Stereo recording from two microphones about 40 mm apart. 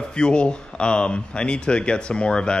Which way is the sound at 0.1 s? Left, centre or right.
Left.